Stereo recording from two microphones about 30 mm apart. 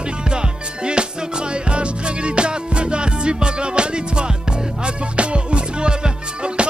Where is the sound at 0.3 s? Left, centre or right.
Right.